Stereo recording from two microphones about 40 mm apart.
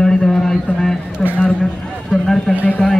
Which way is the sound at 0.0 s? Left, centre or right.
Centre.